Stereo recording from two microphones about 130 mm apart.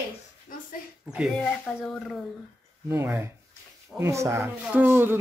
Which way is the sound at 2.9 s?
20° right (ahead or behind).